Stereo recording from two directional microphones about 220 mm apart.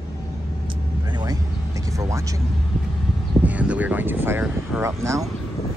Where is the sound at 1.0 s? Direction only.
20° right (ahead or behind).